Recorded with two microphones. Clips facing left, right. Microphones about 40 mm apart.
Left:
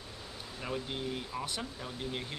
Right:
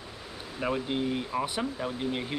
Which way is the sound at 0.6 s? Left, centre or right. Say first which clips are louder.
Right 8 dB; right.